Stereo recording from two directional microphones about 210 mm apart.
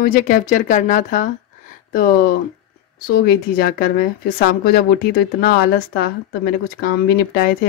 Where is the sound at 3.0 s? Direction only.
45° left (ahead or behind).